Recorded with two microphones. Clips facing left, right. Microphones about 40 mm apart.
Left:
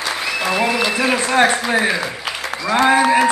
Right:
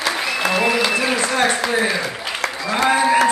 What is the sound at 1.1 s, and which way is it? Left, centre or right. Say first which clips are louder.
Speech: left 3 dB; left.